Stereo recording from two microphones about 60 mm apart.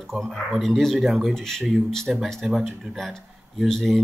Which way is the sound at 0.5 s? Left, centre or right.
Centre.